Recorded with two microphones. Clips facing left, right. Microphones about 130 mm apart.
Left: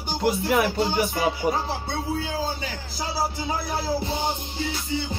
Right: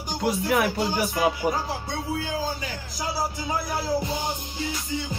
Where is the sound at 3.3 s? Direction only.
30° left (ahead or behind).